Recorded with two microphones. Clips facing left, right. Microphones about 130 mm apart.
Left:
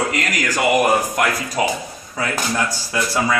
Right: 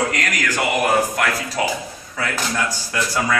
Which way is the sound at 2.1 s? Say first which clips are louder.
Left 2 dB; 20° left (ahead or behind).